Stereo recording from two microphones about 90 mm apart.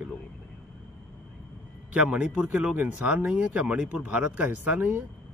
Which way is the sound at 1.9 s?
10° right (ahead or behind).